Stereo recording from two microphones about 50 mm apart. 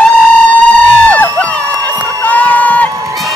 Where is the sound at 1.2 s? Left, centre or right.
Left.